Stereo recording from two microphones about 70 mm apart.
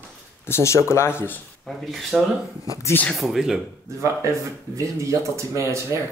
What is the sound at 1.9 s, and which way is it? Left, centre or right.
Speech, centre.